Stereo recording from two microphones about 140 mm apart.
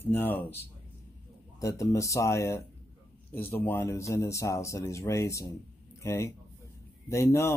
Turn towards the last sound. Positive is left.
turn(degrees=20)  # may be behind; listen again after turning